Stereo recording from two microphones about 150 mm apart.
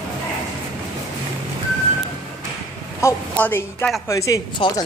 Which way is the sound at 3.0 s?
15° left (ahead or behind).